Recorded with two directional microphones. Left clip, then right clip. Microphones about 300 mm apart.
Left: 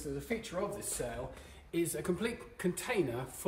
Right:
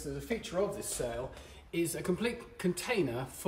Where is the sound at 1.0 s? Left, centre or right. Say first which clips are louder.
Right 5 dB; centre.